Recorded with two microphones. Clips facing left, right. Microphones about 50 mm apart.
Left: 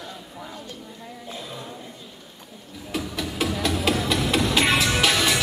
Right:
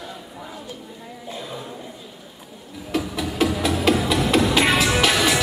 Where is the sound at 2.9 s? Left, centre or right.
Centre.